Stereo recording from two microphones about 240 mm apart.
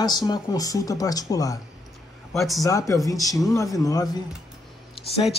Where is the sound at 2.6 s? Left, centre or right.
Centre.